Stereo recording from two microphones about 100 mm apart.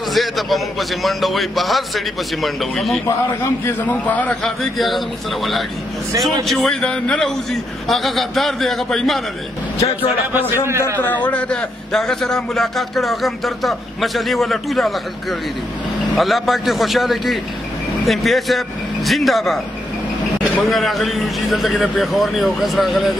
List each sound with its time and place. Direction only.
0.1 s a man's voice: centre (ahead or behind)
3.6 s a man's voice: 15° left (ahead or behind)
4.4 s a man's voice: centre (ahead or behind)
9.8 s speech: 80° left
11.0 s a man's voice: 15° left (ahead or behind); by 15.0 s centre (ahead or behind)
16.2 s a man's voice: centre (ahead or behind)
20.6 s a man's voice: centre (ahead or behind)